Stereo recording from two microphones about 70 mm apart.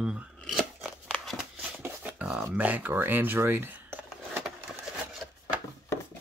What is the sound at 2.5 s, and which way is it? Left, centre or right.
Speech, right.